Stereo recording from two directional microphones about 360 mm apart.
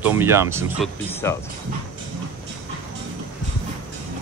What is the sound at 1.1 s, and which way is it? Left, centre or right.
Speech, centre.